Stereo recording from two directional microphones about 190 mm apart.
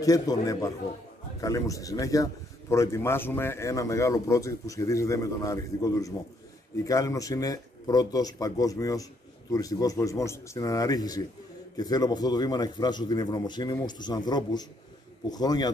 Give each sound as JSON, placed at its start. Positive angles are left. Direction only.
{"t": 0.0, "sound": "a man's voice", "side_deg": 20}